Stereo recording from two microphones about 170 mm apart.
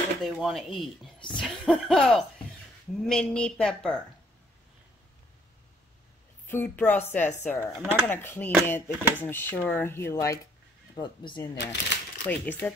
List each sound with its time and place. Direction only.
0.2 s speech: centre (ahead or behind)
6.4 s speech: 10° left (ahead or behind)
11.5 s speech: 90° left
12.3 s speech: 10° left (ahead or behind)